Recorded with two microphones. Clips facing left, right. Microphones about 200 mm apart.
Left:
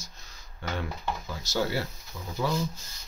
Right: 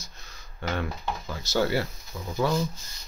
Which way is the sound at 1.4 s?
60° right (ahead or behind).